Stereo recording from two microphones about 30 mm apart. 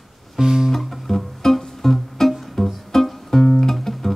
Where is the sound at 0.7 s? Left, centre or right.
Centre.